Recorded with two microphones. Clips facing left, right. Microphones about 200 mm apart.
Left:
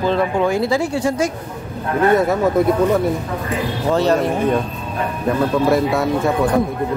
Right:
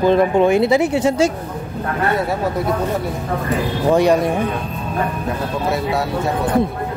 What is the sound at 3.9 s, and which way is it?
Speech, 15° right (ahead or behind).